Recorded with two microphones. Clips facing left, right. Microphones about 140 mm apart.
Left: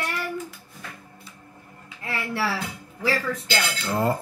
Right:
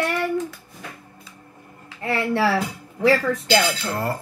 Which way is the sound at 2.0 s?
75° right (ahead or behind).